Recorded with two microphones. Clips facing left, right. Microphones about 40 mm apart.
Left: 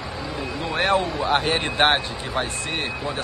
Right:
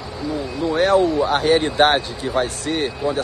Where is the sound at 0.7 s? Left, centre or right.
Left.